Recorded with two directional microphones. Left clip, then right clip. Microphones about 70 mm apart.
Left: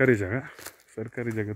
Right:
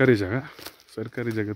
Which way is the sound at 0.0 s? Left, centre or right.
Right.